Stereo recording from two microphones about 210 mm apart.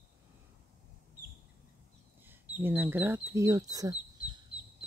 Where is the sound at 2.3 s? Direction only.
10° right (ahead or behind).